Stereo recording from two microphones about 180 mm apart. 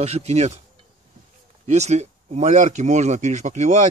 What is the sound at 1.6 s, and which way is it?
Speech, 40° right (ahead or behind).